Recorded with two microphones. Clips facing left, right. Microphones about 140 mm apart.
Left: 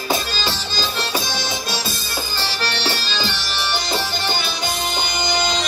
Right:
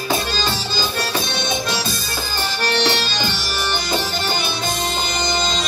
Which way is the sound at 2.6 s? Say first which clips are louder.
Right 6 dB; 45° right (ahead or behind).